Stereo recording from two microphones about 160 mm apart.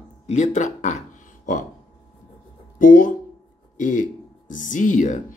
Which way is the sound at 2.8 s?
55° left (ahead or behind).